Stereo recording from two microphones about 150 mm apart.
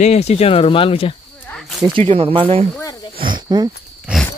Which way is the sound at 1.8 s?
35° right (ahead or behind).